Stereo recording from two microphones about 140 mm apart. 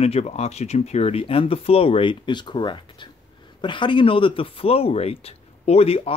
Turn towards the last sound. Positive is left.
turn(degrees=45)  # may be behind; listen again after turning